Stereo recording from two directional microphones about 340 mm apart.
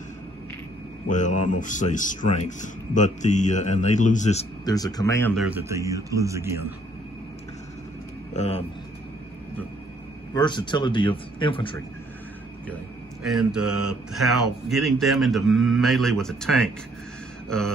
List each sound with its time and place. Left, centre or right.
1.0 s speech: left; by 6.6 s centre
8.3 s speech: centre
10.3 s speech: centre
13.2 s speech: centre